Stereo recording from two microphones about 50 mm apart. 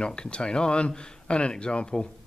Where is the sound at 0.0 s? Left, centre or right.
Centre.